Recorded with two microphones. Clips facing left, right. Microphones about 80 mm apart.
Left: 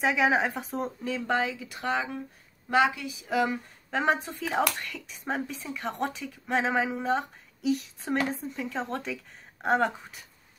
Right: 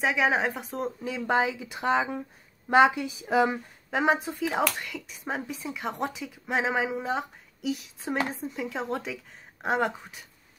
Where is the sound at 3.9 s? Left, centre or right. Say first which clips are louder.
Right 2 dB; centre.